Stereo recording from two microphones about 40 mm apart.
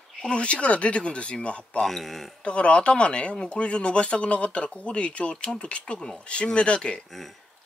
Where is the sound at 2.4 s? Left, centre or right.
Left.